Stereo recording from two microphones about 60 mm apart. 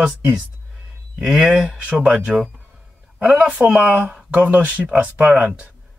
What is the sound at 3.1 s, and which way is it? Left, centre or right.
A man's voice, right.